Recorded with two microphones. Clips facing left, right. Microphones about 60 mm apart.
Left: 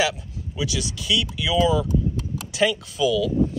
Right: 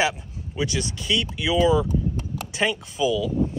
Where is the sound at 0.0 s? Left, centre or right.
Right.